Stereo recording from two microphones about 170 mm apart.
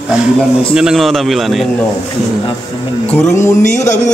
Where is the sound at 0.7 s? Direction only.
5° right (ahead or behind).